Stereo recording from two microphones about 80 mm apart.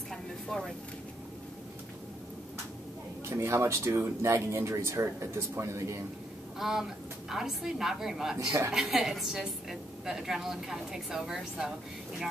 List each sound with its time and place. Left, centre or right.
0.1 s a sound: centre
3.3 s speech: right
6.6 s a woman's voice: centre
8.4 s a woman's voice: right
8.7 s a woman's voice: centre